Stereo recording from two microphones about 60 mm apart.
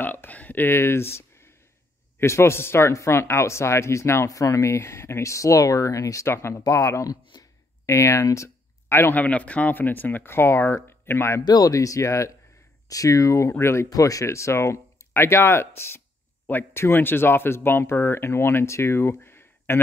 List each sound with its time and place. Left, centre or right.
0.0 s a sound: left
2.1 s speech: left
4.3 s speech: left
7.8 s speech: left
8.8 s a sound: left
9.1 s speech: left
11.6 s speech: left
12.8 s speech: left
13.8 s speech: left